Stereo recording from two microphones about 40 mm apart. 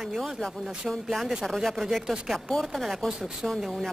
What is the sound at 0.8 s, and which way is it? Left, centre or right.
Speech, right.